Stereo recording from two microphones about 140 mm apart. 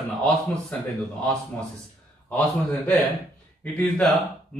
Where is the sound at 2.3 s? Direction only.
10° left (ahead or behind).